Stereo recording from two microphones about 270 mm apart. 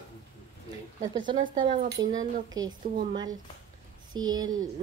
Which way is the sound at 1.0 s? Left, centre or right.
Centre.